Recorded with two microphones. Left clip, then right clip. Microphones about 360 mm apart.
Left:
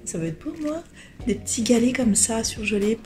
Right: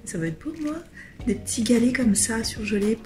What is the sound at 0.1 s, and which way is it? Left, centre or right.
A woman's voice, centre.